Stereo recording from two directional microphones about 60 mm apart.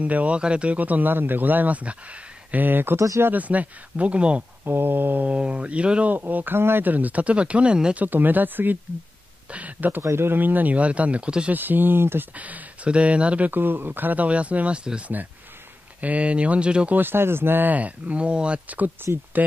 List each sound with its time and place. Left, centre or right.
0.0 s speech: right
3.3 s speech: right
4.6 s speech: right; by 6.1 s centre
6.1 s speech: right; by 8.0 s centre
8.0 s speech: right
9.5 s a sound: right
10.0 s speech: right; by 11.5 s centre
11.5 s speech: right
12.4 s speech: right
13.5 s speech: right; by 16.9 s centre
16.9 s speech: right